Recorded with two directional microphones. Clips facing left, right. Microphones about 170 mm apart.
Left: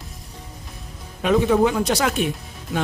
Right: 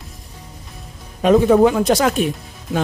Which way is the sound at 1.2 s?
45° right (ahead or behind).